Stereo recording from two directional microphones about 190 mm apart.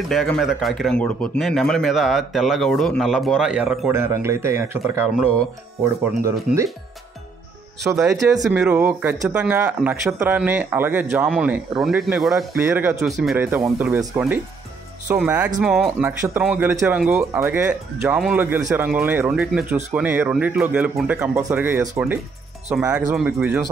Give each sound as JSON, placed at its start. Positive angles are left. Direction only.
{"t": 0.1, "sound": "a man's voice", "side_deg": 0}
{"t": 3.9, "sound": "speech", "side_deg": -15}
{"t": 6.5, "sound": "a man's voice", "side_deg": -5}
{"t": 7.8, "sound": "a man's voice", "side_deg": 0}